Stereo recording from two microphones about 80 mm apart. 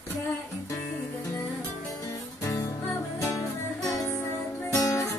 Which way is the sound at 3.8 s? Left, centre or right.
Left.